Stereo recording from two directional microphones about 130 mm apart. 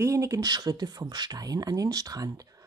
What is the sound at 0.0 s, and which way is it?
Speech, 25° right (ahead or behind).